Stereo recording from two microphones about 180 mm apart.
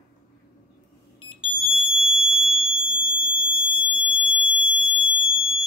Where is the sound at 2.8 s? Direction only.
25° left (ahead or behind).